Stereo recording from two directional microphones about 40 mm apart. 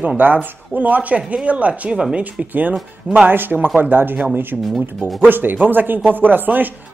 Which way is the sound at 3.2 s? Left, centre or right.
Right.